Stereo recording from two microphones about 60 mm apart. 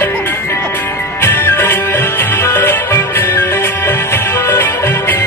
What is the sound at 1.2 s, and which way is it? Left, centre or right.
Music, left.